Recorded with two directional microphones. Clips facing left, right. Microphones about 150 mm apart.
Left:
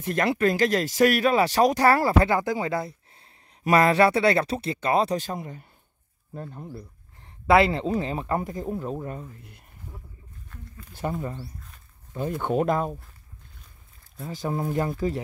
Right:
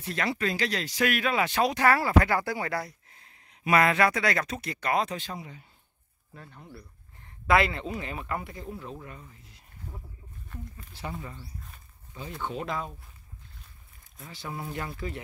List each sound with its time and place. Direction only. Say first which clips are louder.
0.0 s speech: left 7 dB; 50° left (ahead or behind)
2.2 s speech: left 4 dB; 20° left (ahead or behind); by 6.7 s 40° left (ahead or behind)
7.4 s speech: left 5 dB; 30° left (ahead or behind); by 9.6 s 50° left (ahead or behind)
10.9 s speech: left 9 dB; 50° left (ahead or behind)
14.1 s speech: left 9 dB; 45° left (ahead or behind)